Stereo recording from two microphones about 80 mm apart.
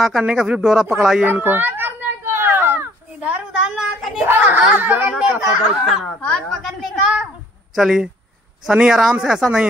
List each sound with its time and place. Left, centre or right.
0.2 s speech: centre
1.2 s children playing: right
3.2 s a woman's voice: centre
4.2 s a child's voice: right
5.3 s speech: centre
6.2 s a woman's voice: centre
6.8 s speech: centre